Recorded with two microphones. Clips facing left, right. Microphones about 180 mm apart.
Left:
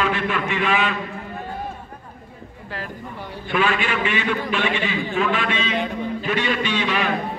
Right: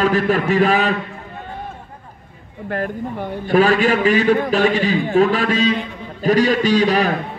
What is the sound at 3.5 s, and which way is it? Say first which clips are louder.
A man's voice: right 8 dB; 40° right (ahead or behind).